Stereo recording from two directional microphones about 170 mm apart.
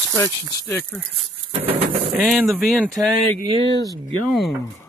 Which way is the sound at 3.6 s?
25° left (ahead or behind).